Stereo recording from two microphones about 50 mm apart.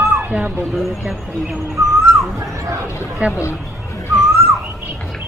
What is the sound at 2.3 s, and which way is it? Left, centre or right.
Bow-wow, right.